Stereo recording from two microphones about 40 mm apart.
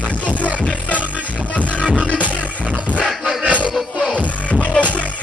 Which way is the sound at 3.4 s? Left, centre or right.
Right.